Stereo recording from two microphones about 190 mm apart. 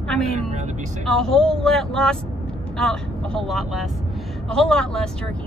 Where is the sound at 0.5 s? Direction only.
35° right (ahead or behind).